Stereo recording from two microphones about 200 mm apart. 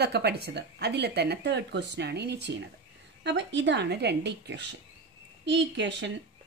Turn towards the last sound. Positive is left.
turn(degrees=-60)  # may be behind; listen again after turning